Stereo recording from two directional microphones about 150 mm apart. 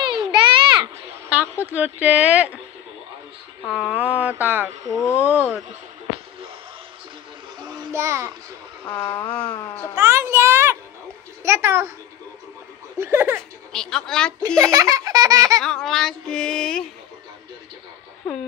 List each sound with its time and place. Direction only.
0.0 s a sound: 30° right (ahead or behind)
1.3 s a woman's voice: 10° right (ahead or behind)
3.6 s a woman's voice: 10° right (ahead or behind)
7.6 s child singing: 30° right (ahead or behind)
7.9 s a child's voice: 20° right (ahead or behind)
8.8 s vehicle: 15° left (ahead or behind)
9.9 s a sound: 20° right (ahead or behind)
11.4 s a woman's voice: 15° right (ahead or behind)
12.9 s speech: 15° right (ahead or behind)
13.7 s a sound: 5° left (ahead or behind)
14.6 s baby laughter: 25° right (ahead or behind)
15.6 s a sound: 5° left (ahead or behind)